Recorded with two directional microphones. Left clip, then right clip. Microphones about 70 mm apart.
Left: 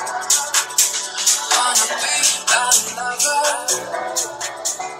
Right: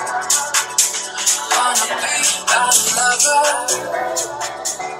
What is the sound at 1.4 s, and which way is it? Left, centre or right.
Music, left.